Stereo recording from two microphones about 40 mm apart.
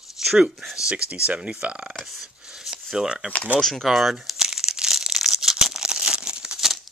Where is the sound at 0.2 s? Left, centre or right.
Centre.